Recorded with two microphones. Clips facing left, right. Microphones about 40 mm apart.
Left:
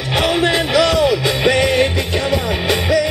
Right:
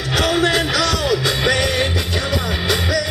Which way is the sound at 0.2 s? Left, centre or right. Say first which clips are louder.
Left 1 dB; left.